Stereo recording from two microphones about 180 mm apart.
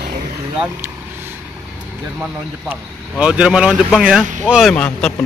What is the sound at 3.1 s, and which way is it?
Speech, 5° right (ahead or behind).